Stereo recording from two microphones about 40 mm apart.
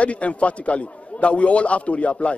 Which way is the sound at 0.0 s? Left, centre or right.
Left.